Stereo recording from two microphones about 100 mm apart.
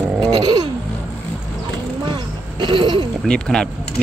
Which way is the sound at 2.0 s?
50° right (ahead or behind).